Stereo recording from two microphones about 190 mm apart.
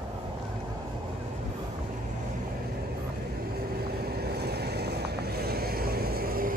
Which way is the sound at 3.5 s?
55° right (ahead or behind).